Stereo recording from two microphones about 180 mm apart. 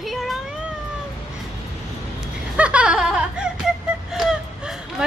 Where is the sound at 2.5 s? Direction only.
5° right (ahead or behind).